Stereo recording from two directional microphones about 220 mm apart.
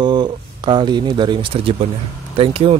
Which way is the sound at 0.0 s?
20° right (ahead or behind).